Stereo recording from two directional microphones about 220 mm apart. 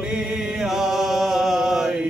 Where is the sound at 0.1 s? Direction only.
5° right (ahead or behind).